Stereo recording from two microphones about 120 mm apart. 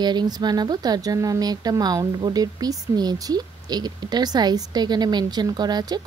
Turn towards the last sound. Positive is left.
turn(degrees=-35)  # may be behind; listen again after turning